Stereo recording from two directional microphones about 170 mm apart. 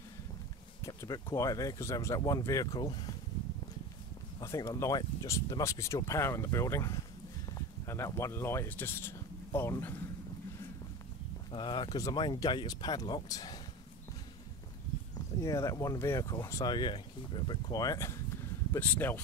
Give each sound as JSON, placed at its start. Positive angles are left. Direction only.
{"t": 0.8, "sound": "speech", "side_deg": 20}
{"t": 4.4, "sound": "speech", "side_deg": 20}
{"t": 11.5, "sound": "speech", "side_deg": 25}
{"t": 15.4, "sound": "speech", "side_deg": 20}